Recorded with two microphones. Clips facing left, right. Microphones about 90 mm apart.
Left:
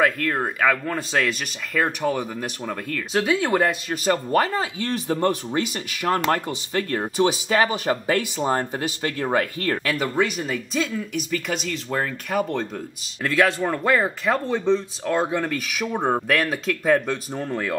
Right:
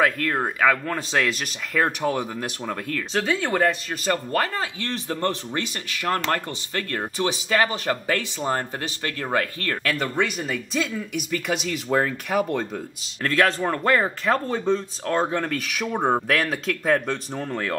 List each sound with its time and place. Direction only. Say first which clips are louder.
0.0 s speech: left 1 dB; centre (ahead or behind); by 9.8 s 20° left (ahead or behind)
9.8 s speech: even; 5° left (ahead or behind)